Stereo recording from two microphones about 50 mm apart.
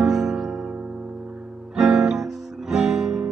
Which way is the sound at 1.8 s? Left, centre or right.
Centre.